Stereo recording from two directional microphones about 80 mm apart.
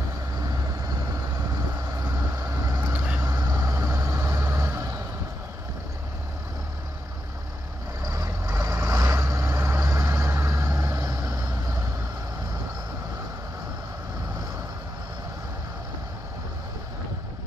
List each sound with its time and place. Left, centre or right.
2.3 s vehicle: right
4.5 s music: right
8.0 s vehicle: right